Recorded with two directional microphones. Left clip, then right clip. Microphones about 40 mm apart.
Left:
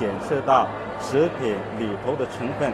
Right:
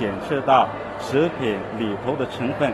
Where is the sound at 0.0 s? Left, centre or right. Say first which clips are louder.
Right 1 dB; left.